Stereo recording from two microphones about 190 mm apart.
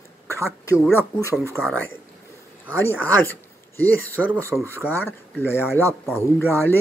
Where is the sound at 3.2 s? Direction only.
10° left (ahead or behind).